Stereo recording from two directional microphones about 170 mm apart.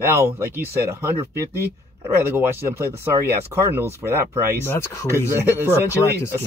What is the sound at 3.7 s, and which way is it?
Speech, 15° right (ahead or behind).